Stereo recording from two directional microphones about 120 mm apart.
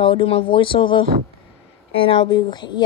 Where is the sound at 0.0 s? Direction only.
45° left (ahead or behind).